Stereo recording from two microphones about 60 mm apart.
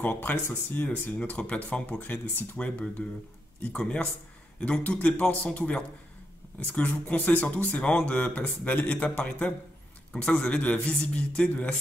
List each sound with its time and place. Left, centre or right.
0.0 s speech: left
2.0 s speech: left
2.5 s speech: centre
3.7 s a sound: centre
4.6 s speech: left
10.9 s a sound: centre